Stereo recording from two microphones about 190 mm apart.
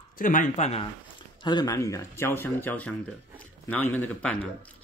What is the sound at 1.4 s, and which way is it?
Speech, 20° left (ahead or behind).